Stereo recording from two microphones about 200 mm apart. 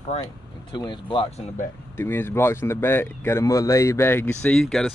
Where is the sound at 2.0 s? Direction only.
10° left (ahead or behind).